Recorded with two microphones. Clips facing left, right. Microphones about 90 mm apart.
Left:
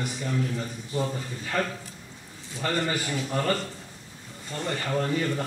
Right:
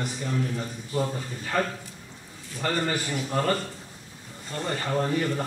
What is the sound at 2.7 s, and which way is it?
Speech, 20° right (ahead or behind).